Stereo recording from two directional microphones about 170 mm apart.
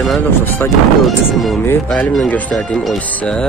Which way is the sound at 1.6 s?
10° left (ahead or behind).